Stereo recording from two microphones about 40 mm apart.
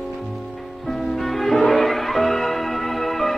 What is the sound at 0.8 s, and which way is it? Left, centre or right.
Music, centre.